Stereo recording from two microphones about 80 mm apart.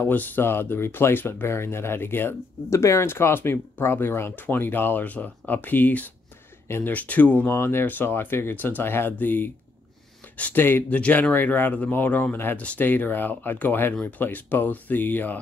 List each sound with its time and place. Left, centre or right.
0.0 s speech: left